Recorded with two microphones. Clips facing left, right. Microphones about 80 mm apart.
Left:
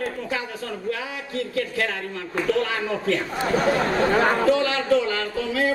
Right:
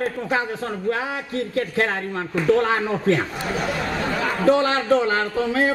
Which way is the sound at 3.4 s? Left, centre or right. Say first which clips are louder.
Left 4 dB; left.